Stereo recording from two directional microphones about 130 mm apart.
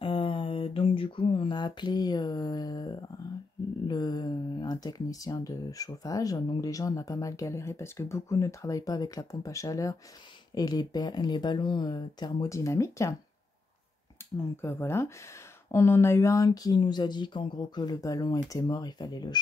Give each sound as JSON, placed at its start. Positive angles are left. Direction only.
{"t": 0.0, "sound": "a sound", "side_deg": 45}
{"t": 3.8, "sound": "speech", "side_deg": 30}
{"t": 14.6, "sound": "speech", "side_deg": 20}